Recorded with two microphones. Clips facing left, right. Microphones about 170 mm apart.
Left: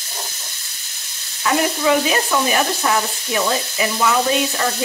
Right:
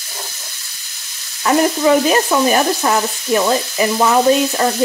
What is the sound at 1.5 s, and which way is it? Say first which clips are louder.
Sizzle: right 4 dB; 35° right (ahead or behind).